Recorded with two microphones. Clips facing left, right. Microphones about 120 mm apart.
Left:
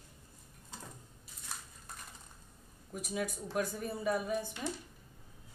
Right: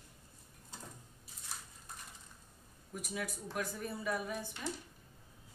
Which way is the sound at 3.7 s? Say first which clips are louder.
Left 4 dB; 30° left (ahead or behind).